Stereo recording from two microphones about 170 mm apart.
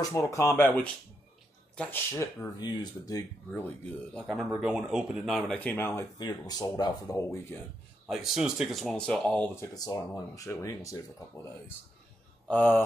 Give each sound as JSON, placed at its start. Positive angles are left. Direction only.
{"t": 0.0, "sound": "speech", "side_deg": 15}
{"t": 3.4, "sound": "speech", "side_deg": 10}
{"t": 8.1, "sound": "speech", "side_deg": 0}
{"t": 9.8, "sound": "speech", "side_deg": 25}
{"t": 12.4, "sound": "speech", "side_deg": 10}